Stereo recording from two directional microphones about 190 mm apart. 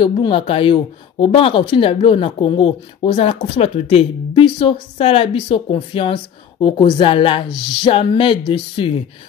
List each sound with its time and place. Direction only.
0.0 s speech: 30° left (ahead or behind)